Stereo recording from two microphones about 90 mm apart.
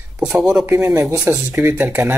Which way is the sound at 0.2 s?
5° right (ahead or behind).